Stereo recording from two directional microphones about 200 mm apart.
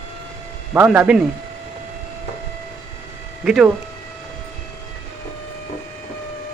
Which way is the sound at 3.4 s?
5° right (ahead or behind).